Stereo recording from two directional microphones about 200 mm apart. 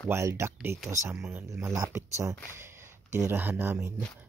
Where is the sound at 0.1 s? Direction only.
15° right (ahead or behind).